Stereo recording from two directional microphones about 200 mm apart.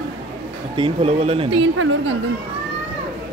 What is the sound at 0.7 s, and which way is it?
Speech, 25° right (ahead or behind).